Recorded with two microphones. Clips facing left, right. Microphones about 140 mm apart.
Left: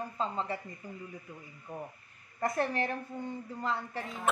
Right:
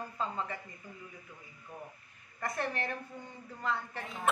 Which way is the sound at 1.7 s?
40° left (ahead or behind).